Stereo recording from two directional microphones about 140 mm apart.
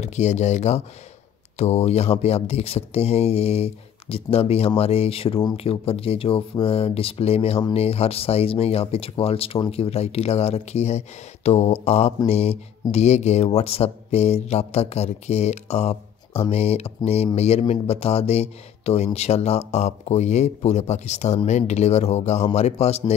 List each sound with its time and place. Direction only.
0.0 s speech: 55° left (ahead or behind)